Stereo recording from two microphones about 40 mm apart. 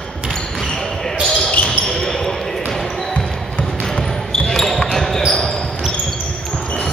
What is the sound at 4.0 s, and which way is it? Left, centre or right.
Basketball bounce, centre.